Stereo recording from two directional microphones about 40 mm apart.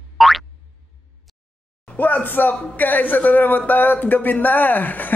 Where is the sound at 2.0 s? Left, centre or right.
Left.